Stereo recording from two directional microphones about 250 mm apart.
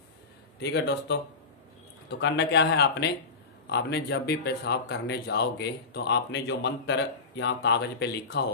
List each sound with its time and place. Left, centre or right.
0.6 s speech: left